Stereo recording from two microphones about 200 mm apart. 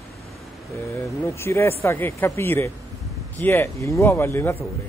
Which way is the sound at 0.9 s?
15° left (ahead or behind).